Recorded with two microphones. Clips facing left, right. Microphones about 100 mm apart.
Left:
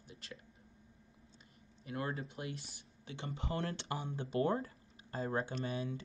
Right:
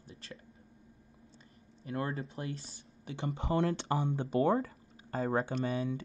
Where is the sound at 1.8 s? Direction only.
35° right (ahead or behind).